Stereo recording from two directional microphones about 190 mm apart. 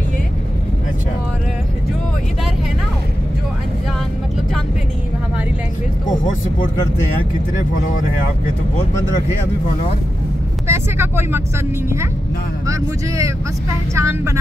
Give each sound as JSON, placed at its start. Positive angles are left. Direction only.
{"t": 10.7, "sound": "speech", "side_deg": -10}
{"t": 12.6, "sound": "speech", "side_deg": -15}